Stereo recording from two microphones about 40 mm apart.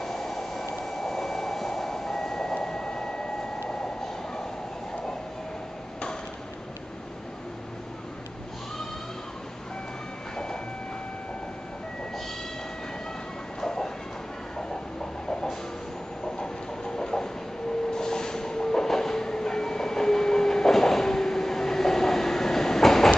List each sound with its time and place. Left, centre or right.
0.0 s a sound: centre
10.3 s train: centre
13.6 s train: centre
16.9 s train: centre